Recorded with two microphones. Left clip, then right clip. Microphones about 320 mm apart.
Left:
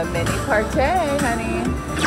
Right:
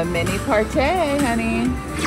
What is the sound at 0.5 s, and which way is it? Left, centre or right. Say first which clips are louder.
Speech: even; right.